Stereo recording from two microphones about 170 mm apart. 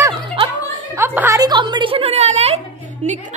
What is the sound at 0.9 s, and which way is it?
A woman's voice, 15° right (ahead or behind).